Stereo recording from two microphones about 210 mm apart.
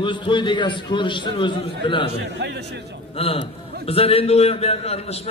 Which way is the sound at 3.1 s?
30° left (ahead or behind).